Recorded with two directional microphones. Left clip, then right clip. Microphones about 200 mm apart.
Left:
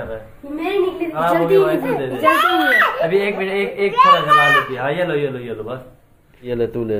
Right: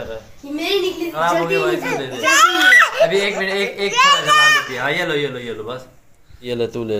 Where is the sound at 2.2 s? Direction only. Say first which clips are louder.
Right 2 dB; 30° right (ahead or behind).